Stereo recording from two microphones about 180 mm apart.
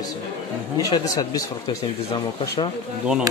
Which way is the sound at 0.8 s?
20° left (ahead or behind).